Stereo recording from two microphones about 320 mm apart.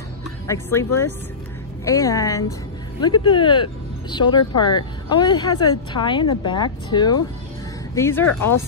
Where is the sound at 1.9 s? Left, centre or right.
Centre.